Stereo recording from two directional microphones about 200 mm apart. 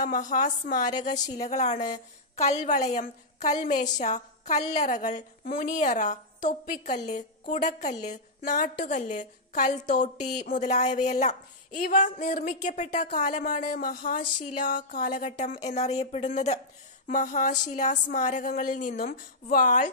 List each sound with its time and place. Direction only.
0.0 s a woman's voice: 40° left (ahead or behind)
1.2 s a woman's voice: 20° left (ahead or behind)
1.5 s a woman's voice: 35° left (ahead or behind)